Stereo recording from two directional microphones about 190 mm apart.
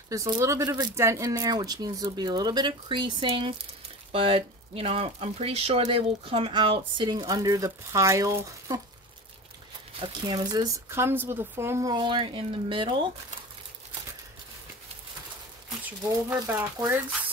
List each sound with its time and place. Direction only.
0.1 s speech: 15° right (ahead or behind)
9.9 s speech: 25° right (ahead or behind)
16.3 s speech: 10° right (ahead or behind)